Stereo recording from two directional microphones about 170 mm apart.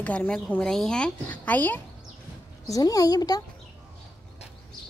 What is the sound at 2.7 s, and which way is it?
Speech, 20° left (ahead or behind).